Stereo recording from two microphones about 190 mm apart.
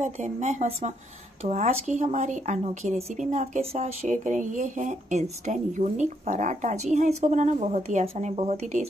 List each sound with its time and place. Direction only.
0.0 s speech: 35° right (ahead or behind)